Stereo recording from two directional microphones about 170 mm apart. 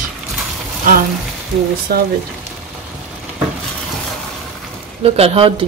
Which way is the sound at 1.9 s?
65° right (ahead or behind).